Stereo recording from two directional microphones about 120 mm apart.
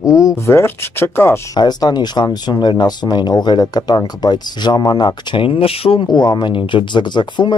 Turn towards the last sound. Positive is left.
turn(degrees=40)  # may be behind; listen again after turning